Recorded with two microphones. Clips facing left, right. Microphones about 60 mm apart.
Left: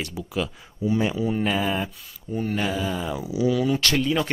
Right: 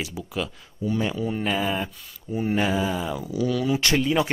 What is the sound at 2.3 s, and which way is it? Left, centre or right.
Speech, centre.